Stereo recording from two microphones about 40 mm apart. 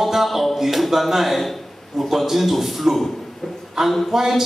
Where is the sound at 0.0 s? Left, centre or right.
Centre.